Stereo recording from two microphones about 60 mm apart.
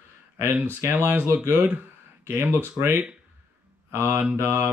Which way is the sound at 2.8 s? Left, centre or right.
Right.